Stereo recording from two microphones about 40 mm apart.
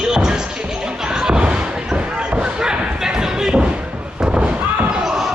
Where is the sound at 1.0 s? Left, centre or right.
Centre.